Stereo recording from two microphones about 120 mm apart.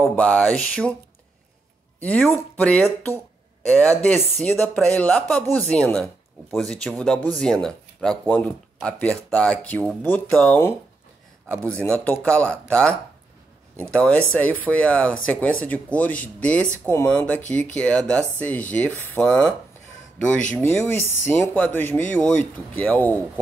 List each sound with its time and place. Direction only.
0.1 s speech: 10° left (ahead or behind)
2.0 s speech: 10° left (ahead or behind)
13.9 s speech: 10° left (ahead or behind)
20.5 s speech: 15° left (ahead or behind)